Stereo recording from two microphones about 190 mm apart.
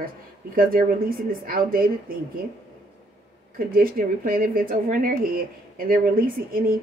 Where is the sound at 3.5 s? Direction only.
50° right (ahead or behind).